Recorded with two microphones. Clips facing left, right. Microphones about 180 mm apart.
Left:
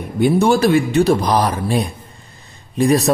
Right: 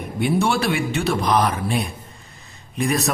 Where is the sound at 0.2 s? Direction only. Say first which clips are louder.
Left 7 dB; 40° left (ahead or behind).